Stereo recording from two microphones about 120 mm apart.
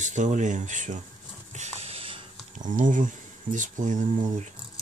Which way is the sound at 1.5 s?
70° right (ahead or behind).